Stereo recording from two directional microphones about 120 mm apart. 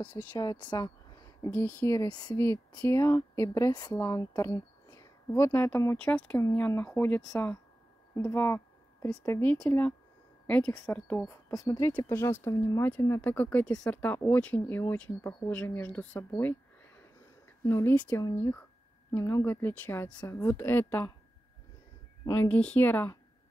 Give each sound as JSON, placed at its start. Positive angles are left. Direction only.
{"t": 0.1, "sound": "speech", "side_deg": 15}
{"t": 0.4, "sound": "speech", "side_deg": 35}
{"t": 5.9, "sound": "speech", "side_deg": 10}
{"t": 11.6, "sound": "speech", "side_deg": 15}
{"t": 17.6, "sound": "speech", "side_deg": 20}
{"t": 22.3, "sound": "speech", "side_deg": 15}